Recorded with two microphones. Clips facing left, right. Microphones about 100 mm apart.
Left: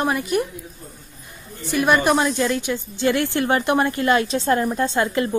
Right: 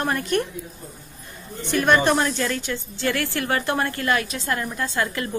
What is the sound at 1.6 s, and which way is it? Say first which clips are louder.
A woman's voice: left 1 dB; 10° left (ahead or behind).